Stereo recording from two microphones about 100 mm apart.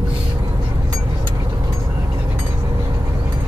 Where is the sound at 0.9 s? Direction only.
35° right (ahead or behind).